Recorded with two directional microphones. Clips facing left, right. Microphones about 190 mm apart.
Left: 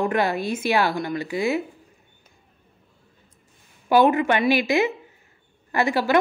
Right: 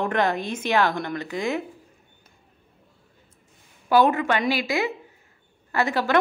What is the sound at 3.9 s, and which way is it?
A woman's voice, 15° left (ahead or behind).